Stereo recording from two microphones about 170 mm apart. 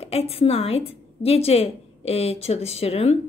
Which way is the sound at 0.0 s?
35° left (ahead or behind).